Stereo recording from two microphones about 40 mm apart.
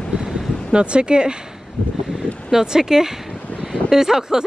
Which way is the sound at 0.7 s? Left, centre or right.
Right.